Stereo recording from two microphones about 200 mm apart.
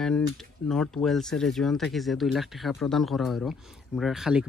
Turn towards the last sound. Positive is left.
turn(degrees=-5)  # may be behind; listen again after turning